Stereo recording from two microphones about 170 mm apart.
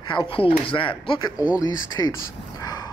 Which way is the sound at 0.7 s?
30° left (ahead or behind).